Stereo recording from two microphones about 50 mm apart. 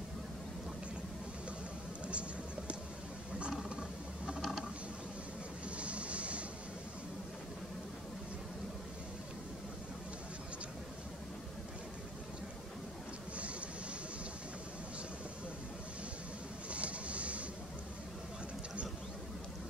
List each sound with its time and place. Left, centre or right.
3.3 s roaring cats: right
4.4 s mechanisms: centre
5.8 s vehicle: right
16.7 s a sound: right